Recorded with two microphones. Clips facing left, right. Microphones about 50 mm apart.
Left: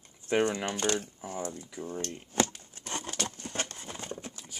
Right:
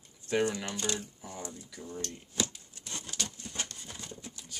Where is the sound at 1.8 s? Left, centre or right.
Left.